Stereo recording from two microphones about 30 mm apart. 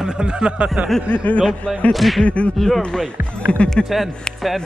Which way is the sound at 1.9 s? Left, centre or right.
Centre.